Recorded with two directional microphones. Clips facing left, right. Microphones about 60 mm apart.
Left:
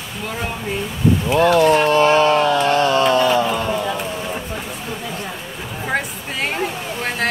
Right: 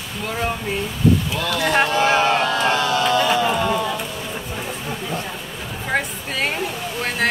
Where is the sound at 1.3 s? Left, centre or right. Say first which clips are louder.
Left 9 dB; left.